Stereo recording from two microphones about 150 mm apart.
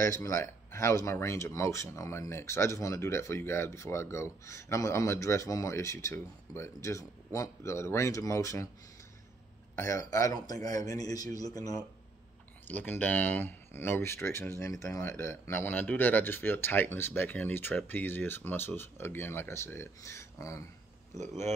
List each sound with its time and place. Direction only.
0.0 s speech: 20° left (ahead or behind)
9.8 s speech: 20° left (ahead or behind)
12.6 s speech: 10° left (ahead or behind)